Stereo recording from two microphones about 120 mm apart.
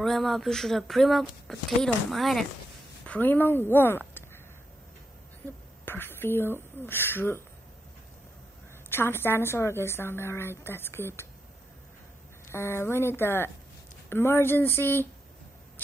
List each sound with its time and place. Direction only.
0.0 s speech: centre (ahead or behind)
3.1 s a woman's voice: 15° left (ahead or behind)
5.9 s a woman's voice: 20° left (ahead or behind)
8.9 s a woman's voice: 20° left (ahead or behind)
12.4 s a woman's voice: 20° left (ahead or behind)